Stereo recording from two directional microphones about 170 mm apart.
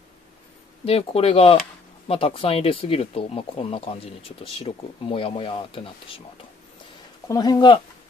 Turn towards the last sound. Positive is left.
turn(degrees=30)  # may be behind; listen again after turning